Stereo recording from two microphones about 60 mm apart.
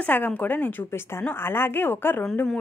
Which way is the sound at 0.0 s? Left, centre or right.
Left.